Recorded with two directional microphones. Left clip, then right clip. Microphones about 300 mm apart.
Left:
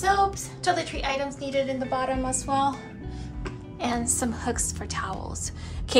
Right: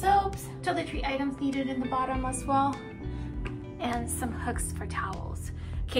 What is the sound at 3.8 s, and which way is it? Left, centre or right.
A woman's voice, centre.